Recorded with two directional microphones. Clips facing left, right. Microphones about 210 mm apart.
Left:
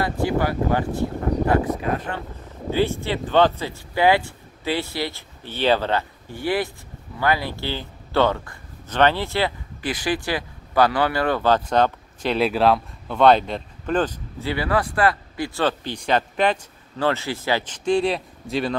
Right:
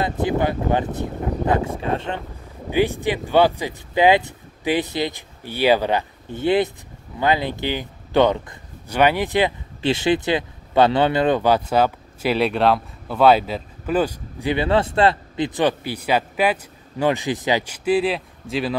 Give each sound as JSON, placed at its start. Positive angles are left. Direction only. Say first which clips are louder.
{"t": 0.0, "sound": "speech", "louder": "right 1 dB", "side_deg": -20}
{"t": 2.7, "sound": "speech", "louder": "right 2 dB", "side_deg": -15}